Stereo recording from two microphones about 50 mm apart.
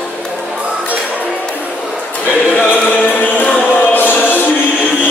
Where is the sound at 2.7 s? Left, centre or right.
Left.